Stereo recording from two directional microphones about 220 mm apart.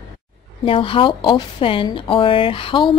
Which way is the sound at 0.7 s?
25° left (ahead or behind).